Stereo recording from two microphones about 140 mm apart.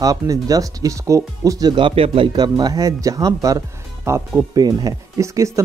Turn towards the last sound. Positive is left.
turn(degrees=-25)  # may be behind; listen again after turning